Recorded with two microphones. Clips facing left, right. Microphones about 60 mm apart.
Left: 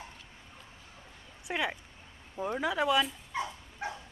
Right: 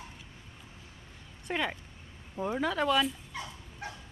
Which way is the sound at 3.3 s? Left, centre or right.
Left.